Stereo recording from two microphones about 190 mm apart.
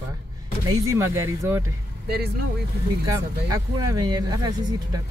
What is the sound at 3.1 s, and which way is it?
Speech, 20° right (ahead or behind).